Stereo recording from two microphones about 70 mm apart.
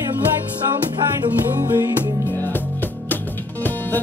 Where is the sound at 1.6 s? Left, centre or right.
Right.